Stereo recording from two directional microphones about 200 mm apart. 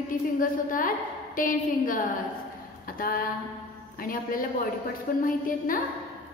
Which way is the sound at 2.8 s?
45° left (ahead or behind).